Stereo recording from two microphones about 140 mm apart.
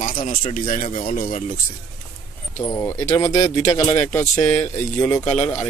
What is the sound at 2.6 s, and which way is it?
Speech, 20° left (ahead or behind).